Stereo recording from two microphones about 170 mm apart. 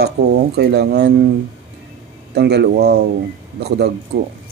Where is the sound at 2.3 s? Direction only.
75° right (ahead or behind).